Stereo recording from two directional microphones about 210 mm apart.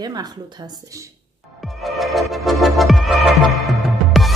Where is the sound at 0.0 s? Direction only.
20° right (ahead or behind).